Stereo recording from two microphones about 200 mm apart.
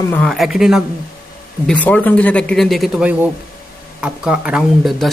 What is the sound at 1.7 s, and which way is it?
A man's voice, 5° left (ahead or behind).